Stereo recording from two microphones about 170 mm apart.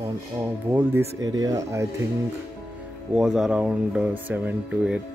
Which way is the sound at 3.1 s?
5° right (ahead or behind).